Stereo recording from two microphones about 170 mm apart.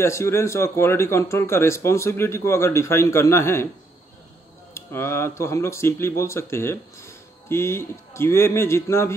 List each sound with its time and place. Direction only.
0.0 s speech: 15° left (ahead or behind)
4.7 s speech: 15° left (ahead or behind)